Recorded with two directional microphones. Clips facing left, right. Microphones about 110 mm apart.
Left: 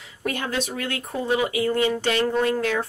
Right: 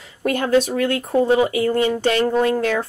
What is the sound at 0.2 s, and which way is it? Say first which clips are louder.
Speech: right 9 dB; 40° right (ahead or behind).